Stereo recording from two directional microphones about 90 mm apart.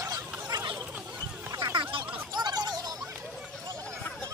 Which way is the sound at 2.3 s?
50° right (ahead or behind).